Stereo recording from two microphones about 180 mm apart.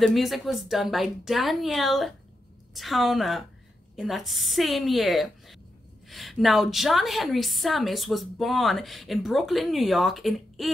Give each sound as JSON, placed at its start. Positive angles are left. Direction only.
{"t": 0.0, "sound": "a woman's voice", "side_deg": 0}